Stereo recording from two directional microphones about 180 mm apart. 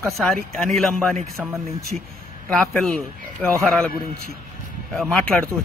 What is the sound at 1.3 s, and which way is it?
Speech, 15° right (ahead or behind).